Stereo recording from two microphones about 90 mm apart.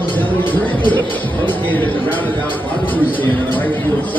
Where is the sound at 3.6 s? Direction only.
20° left (ahead or behind).